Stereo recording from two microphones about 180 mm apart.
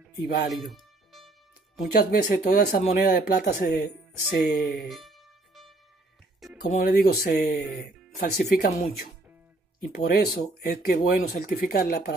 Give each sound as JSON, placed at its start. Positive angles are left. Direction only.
{"t": 0.2, "sound": "speech", "side_deg": 70}
{"t": 2.0, "sound": "speech", "side_deg": 55}
{"t": 4.4, "sound": "music", "side_deg": 0}
{"t": 6.6, "sound": "speech", "side_deg": 45}
{"t": 6.9, "sound": "speech", "side_deg": 60}
{"t": 9.9, "sound": "speech", "side_deg": 60}